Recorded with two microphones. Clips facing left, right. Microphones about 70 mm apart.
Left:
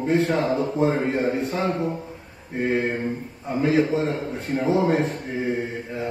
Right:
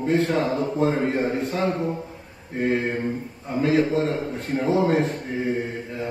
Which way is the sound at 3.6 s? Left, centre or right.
Centre.